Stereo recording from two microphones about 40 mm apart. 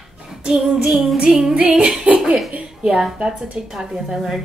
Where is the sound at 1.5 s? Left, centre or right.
Centre.